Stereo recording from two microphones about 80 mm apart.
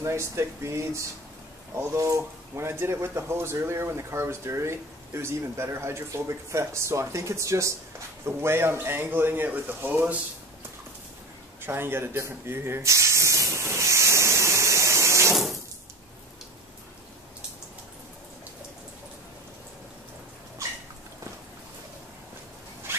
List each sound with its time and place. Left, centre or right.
0.0 s speech: right
11.6 s spray: right
22.9 s zipper: right